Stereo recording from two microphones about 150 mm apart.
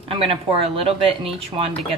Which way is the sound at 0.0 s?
35° right (ahead or behind).